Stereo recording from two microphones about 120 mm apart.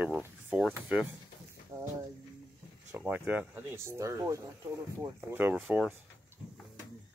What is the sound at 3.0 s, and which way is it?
Speech, 15° right (ahead or behind).